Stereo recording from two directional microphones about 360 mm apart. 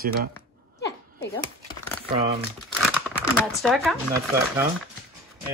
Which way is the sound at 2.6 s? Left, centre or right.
Centre.